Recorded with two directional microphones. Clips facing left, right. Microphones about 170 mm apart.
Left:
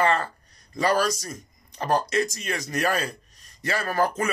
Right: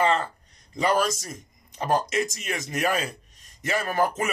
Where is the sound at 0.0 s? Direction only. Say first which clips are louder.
Even; 20° right (ahead or behind).